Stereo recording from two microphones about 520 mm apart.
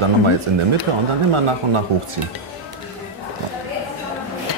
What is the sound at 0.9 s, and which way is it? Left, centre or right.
Speech, right.